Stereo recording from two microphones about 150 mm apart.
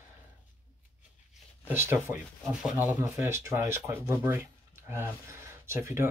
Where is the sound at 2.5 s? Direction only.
5° right (ahead or behind).